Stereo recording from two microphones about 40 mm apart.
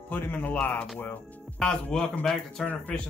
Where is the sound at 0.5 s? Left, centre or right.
Left.